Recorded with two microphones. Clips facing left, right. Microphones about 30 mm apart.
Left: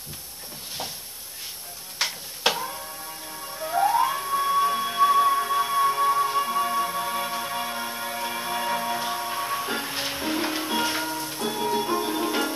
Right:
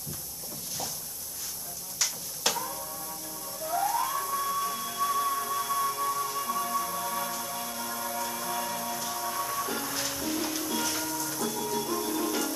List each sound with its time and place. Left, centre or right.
2.0 s tick-tock: left
3.5 s music: left